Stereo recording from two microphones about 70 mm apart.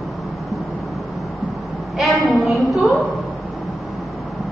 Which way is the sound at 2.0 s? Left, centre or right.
Centre.